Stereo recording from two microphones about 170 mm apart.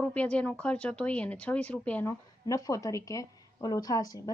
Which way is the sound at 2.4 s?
20° left (ahead or behind).